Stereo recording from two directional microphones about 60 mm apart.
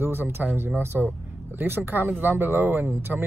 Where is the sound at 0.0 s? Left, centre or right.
Right.